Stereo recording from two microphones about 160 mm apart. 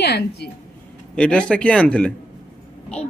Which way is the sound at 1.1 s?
5° left (ahead or behind).